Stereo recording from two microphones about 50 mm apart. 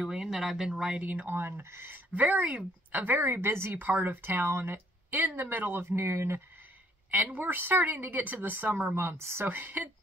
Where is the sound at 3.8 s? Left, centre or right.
Right.